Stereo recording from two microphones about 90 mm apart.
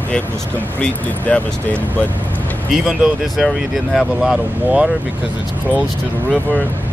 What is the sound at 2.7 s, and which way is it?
Speech, 5° right (ahead or behind).